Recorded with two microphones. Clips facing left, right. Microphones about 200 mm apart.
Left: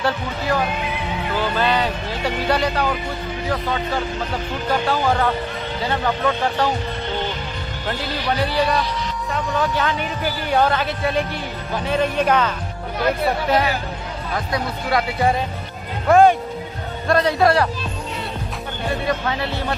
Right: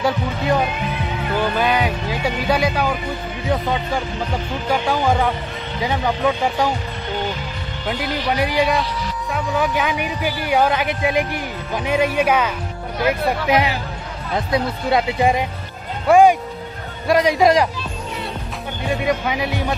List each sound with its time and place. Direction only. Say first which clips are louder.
0.0 s a man's voice: right 2 dB; 20° right (ahead or behind)
8.0 s a man's voice: right 2 dB; 15° right (ahead or behind)
19.0 s a man's voice: right 3 dB; 15° right (ahead or behind)